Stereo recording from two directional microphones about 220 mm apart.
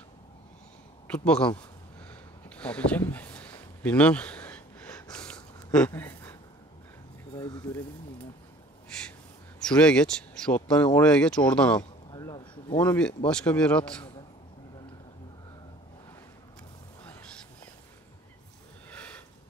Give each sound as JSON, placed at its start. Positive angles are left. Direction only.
{"t": 1.0, "sound": "speech", "side_deg": 5}
{"t": 2.0, "sound": "a sound", "side_deg": 5}
{"t": 5.9, "sound": "speech", "side_deg": 10}
{"t": 7.6, "sound": "speech", "side_deg": 5}
{"t": 8.9, "sound": "gasp", "side_deg": 5}
{"t": 9.6, "sound": "speech", "side_deg": 5}
{"t": 12.1, "sound": "a sound", "side_deg": 20}
{"t": 12.7, "sound": "speech", "side_deg": 5}
{"t": 18.9, "sound": "sniff", "side_deg": 5}